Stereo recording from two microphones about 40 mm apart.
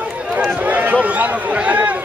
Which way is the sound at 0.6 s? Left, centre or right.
Right.